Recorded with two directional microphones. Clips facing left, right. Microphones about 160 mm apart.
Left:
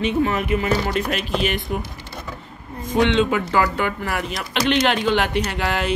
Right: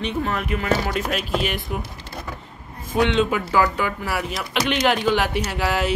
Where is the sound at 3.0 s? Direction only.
5° right (ahead or behind).